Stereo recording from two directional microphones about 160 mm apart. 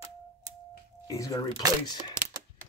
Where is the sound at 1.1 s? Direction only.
20° left (ahead or behind).